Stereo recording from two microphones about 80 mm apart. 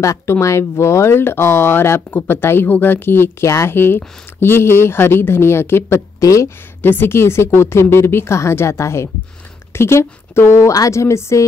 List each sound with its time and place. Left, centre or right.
0.0 s speech: left
6.1 s speech: left
6.8 s speech: left
10.7 s speech: left